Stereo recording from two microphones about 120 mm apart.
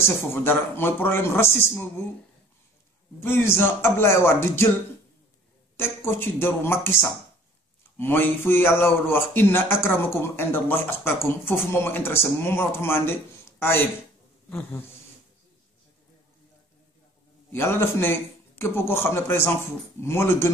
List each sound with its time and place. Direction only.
0.0 s a man's voice: 20° left (ahead or behind)
3.2 s a man's voice: 20° left (ahead or behind)
5.8 s a man's voice: 20° left (ahead or behind)
17.5 s a man's voice: 20° left (ahead or behind)